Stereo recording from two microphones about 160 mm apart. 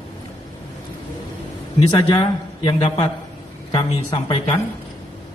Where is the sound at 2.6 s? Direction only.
30° left (ahead or behind).